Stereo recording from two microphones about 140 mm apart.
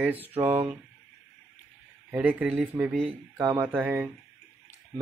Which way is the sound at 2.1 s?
10° right (ahead or behind).